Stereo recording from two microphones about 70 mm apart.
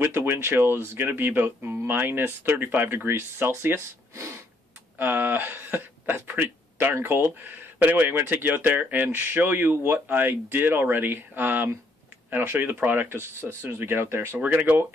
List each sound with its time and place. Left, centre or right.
0.0 s speech: right
4.9 s speech: right
14.4 s speech: right